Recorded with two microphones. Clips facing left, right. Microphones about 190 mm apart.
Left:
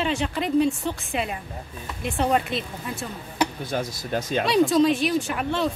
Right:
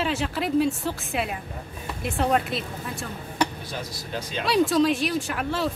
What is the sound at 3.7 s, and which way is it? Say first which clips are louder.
Speech: left 6 dB; 50° left (ahead or behind).